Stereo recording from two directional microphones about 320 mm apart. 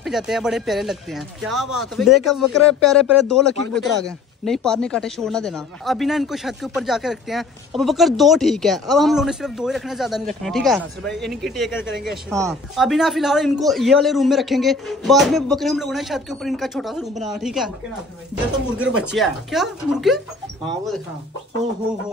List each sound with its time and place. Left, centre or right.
0.0 s speech: centre
18.8 s speech: centre